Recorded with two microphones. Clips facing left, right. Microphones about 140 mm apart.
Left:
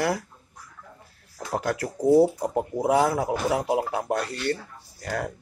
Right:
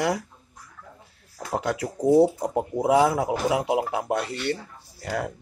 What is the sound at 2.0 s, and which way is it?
Speech, 20° right (ahead or behind).